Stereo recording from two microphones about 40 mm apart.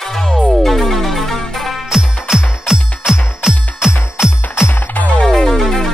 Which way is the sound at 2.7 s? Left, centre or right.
Centre.